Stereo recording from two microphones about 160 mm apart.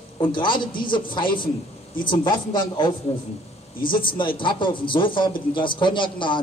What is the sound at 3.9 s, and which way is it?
A man's voice, 30° left (ahead or behind).